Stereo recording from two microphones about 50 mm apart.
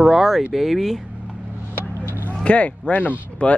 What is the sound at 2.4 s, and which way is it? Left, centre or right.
Speech, left.